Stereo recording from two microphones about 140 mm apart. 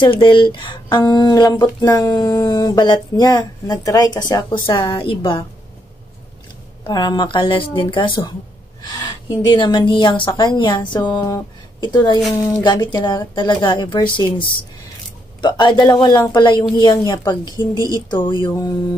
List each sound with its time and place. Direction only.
0.0 s speech: 35° left (ahead or behind)
6.9 s speech: 30° left (ahead or behind)
15.4 s speech: 35° left (ahead or behind)
17.7 s speech: 25° right (ahead or behind)
18.1 s speech: 35° left (ahead or behind)